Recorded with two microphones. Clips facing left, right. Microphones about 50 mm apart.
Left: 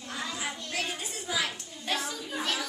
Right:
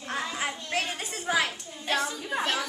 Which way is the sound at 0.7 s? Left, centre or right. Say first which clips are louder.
Right 3 dB; right.